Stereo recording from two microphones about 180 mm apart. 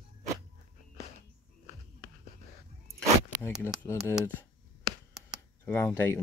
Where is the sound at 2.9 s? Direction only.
10° left (ahead or behind).